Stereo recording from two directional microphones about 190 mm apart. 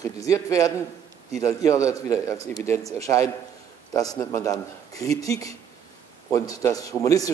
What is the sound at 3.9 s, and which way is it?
Speech, 20° left (ahead or behind).